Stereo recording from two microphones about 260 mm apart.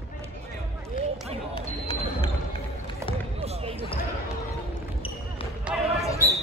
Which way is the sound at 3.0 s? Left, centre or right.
Centre.